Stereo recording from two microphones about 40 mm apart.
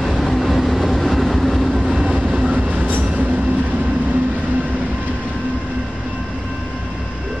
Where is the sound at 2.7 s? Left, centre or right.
Right.